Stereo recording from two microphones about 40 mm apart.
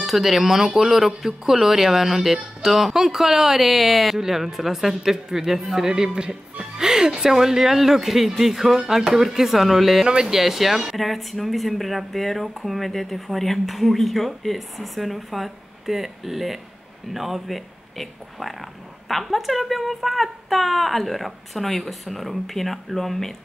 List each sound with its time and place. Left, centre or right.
0.0 s a woman's voice: centre